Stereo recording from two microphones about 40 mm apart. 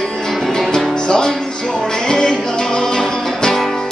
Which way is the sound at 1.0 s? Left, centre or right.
Centre.